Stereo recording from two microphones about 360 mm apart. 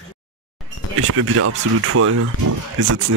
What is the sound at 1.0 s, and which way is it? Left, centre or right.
Speech, right.